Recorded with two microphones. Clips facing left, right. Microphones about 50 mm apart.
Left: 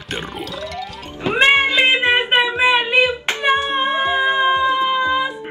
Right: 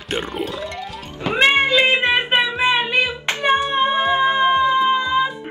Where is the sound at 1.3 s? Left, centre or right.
Centre.